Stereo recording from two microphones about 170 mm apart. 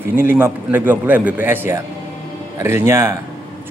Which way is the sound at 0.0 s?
15° right (ahead or behind).